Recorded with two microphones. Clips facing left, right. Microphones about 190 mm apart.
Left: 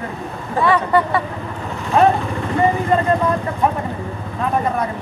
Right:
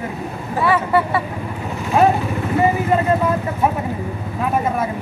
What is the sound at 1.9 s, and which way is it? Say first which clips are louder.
Vehicle: left 1 dB; 10° right (ahead or behind).